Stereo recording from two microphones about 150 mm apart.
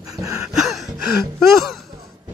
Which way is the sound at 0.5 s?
Centre (ahead or behind).